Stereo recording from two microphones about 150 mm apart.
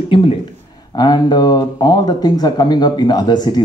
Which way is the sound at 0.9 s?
30° left (ahead or behind).